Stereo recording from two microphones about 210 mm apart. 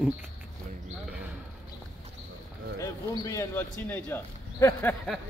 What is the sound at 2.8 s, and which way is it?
Speech, 15° left (ahead or behind).